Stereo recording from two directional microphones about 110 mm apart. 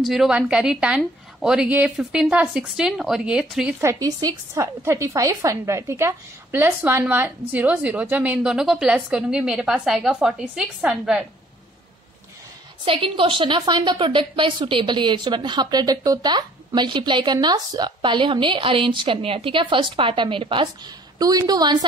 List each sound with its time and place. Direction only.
0.0 s a woman's voice: 5° right (ahead or behind)
3.8 s a woman's voice: 35° right (ahead or behind); by 11.2 s 5° right (ahead or behind)
12.8 s a woman's voice: 55° right (ahead or behind)
21.2 s a woman's voice: 35° right (ahead or behind)